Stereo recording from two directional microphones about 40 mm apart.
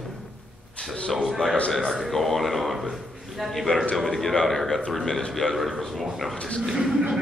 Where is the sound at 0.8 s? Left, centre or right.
Left.